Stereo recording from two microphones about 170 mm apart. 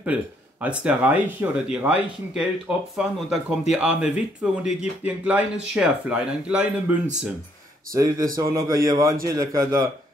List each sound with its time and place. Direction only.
0.0 s speech: 10° right (ahead or behind)
7.9 s a man's voice: 20° right (ahead or behind)